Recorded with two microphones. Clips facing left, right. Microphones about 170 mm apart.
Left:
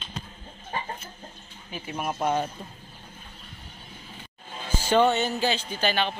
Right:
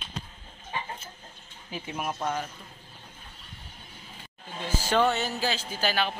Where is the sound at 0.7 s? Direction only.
45° left (ahead or behind).